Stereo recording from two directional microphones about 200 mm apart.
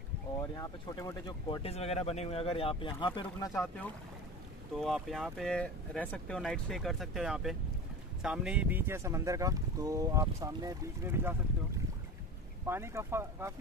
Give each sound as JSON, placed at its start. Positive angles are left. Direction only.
{"t": 0.4, "sound": "speech", "side_deg": 20}
{"t": 3.5, "sound": "speech", "side_deg": 5}
{"t": 12.6, "sound": "speech", "side_deg": -10}